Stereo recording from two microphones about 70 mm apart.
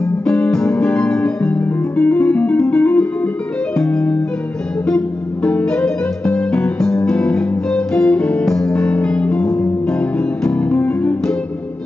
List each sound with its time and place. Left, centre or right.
0.0 s music: centre